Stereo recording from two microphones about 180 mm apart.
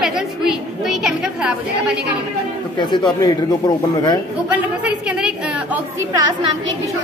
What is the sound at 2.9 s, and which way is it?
Speech, 20° left (ahead or behind).